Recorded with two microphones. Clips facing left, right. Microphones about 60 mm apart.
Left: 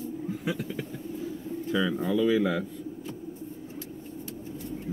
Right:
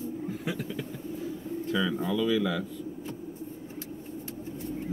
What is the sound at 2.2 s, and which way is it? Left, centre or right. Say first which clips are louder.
Speech: left 3 dB; left.